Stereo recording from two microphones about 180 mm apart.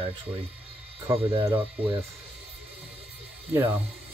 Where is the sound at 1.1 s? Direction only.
30° right (ahead or behind).